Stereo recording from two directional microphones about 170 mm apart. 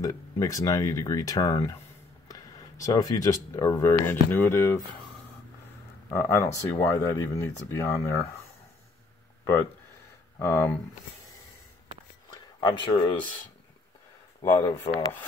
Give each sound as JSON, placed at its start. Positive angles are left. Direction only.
{"t": 0.0, "sound": "speech", "side_deg": 20}
{"t": 6.0, "sound": "speech", "side_deg": 15}
{"t": 10.4, "sound": "speech", "side_deg": 10}
{"t": 12.5, "sound": "speech", "side_deg": 25}
{"t": 14.4, "sound": "speech", "side_deg": 15}